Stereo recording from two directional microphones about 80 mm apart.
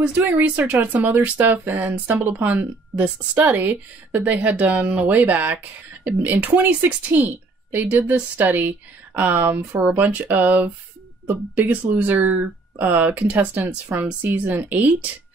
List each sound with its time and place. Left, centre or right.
0.0 s speech: right